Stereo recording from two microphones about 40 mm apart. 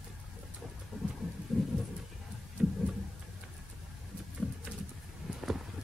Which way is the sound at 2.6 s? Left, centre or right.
Right.